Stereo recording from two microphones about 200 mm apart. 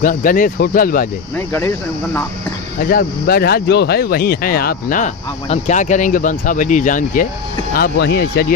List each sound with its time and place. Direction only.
0.0 s speech: 40° left (ahead or behind)
2.8 s speech: 50° left (ahead or behind)
7.7 s speech: 50° left (ahead or behind)